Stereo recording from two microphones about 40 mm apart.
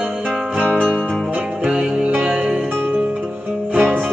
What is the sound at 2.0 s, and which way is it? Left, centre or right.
Music, right.